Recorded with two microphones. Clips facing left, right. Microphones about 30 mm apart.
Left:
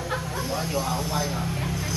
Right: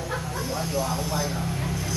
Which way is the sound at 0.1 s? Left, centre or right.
Centre.